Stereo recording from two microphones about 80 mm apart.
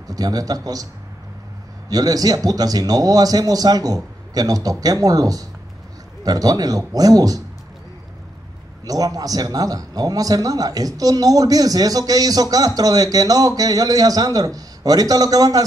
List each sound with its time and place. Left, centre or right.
0.1 s speech: right
1.9 s speech: right
8.8 s speech: right